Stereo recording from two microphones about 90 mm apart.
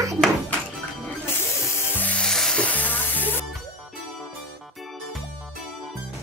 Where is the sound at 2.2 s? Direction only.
5° left (ahead or behind).